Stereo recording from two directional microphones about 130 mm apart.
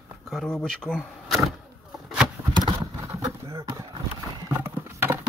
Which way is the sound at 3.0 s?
20° right (ahead or behind).